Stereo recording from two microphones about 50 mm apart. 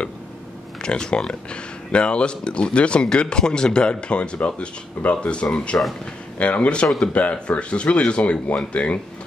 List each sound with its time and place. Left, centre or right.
0.7 s speech: centre